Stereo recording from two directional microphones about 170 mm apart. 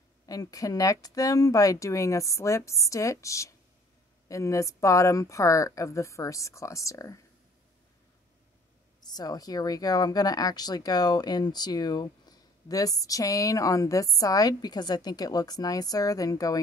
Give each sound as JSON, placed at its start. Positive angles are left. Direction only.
{"t": 0.3, "sound": "speech", "side_deg": 20}
{"t": 9.0, "sound": "speech", "side_deg": 25}